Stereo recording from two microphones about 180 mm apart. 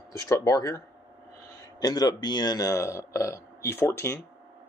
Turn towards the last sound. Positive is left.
turn(degrees=15)  # may be behind; listen again after turning